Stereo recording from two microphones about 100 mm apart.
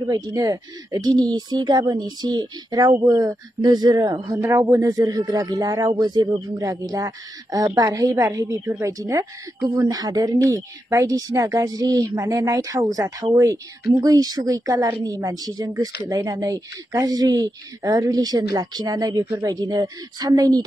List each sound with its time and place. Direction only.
0.1 s a man's voice: 35° right (ahead or behind)